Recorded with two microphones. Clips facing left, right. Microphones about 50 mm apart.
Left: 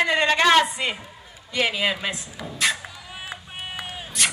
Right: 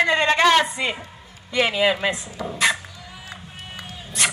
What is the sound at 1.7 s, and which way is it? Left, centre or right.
Speech, centre.